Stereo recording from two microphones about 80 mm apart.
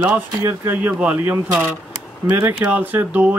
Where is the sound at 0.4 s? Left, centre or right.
Right.